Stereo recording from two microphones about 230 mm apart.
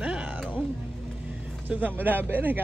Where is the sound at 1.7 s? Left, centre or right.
Centre.